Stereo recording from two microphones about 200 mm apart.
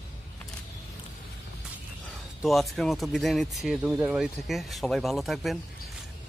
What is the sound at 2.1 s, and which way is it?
Speech, centre (ahead or behind).